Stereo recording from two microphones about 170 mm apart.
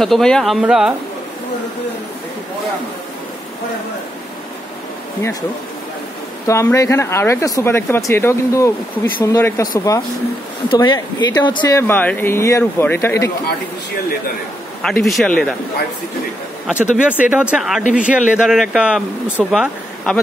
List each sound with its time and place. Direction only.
0.0 s speech: centre (ahead or behind)
6.4 s speech: 15° left (ahead or behind)
10.7 s speech: 25° left (ahead or behind)
11.9 s speech: 10° left (ahead or behind)
14.8 s speech: centre (ahead or behind)
16.6 s speech: 5° right (ahead or behind)